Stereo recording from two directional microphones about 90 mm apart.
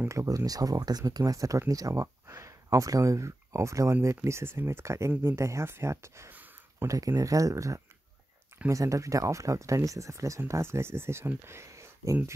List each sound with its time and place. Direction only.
0.1 s speech: 35° right (ahead or behind)
6.3 s a sound: 20° right (ahead or behind)
7.2 s speech: 40° right (ahead or behind)